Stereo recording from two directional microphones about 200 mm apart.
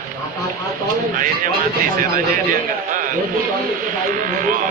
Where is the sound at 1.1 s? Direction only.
45° right (ahead or behind).